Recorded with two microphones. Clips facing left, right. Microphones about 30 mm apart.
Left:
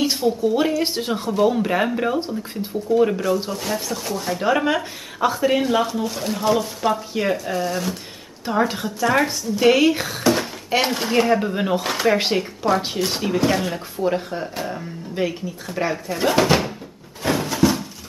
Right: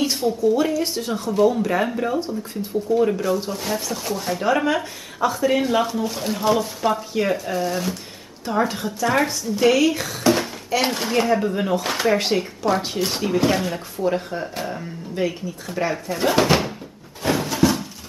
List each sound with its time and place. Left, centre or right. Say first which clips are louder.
0.0 s a sound: left 1 dB; centre
0.4 s speech: even; left
2.9 s speech: left 2 dB; centre
5.6 s speech: even; centre
8.5 s speech: left 1 dB; centre
9.7 s speech: left 2 dB; left
10.2 s speech: right 1 dB; centre
11.8 s speech: left 1 dB; centre
17.2 s a sound: even; centre